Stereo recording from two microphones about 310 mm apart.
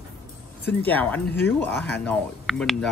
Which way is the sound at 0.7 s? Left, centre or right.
Centre.